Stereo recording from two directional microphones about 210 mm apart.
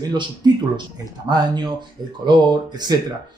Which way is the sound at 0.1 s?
20° right (ahead or behind).